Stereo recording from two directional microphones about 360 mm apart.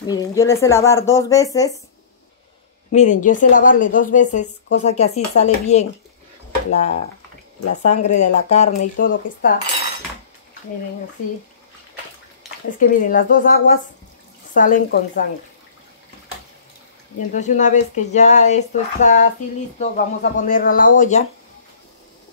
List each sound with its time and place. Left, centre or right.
0.0 s speech: centre
2.9 s a woman's voice: centre
12.6 s a woman's voice: left
17.3 s a woman's voice: centre